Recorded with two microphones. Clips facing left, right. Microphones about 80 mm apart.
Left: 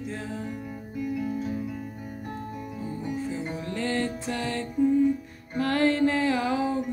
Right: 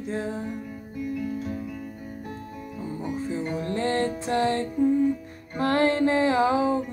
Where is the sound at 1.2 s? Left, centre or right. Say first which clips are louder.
Left 1 dB; centre.